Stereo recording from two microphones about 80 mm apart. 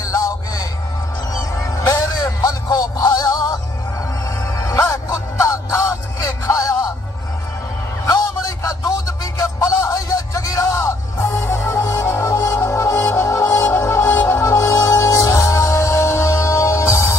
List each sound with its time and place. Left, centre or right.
0.0 s music: left
8.1 s music: left